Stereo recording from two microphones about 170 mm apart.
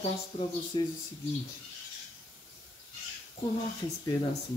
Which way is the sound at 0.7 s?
25° left (ahead or behind).